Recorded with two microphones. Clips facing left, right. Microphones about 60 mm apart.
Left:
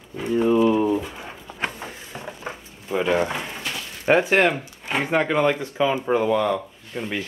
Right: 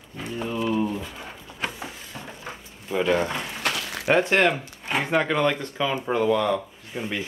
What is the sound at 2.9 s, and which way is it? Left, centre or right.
Speech, centre.